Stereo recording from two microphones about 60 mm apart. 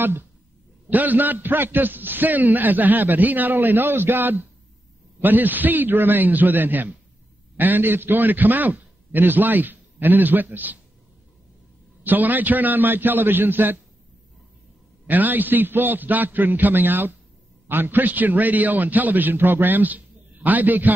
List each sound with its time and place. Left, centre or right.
0.8 s a man's voice: right
12.0 s a man's voice: right
15.0 s a man's voice: right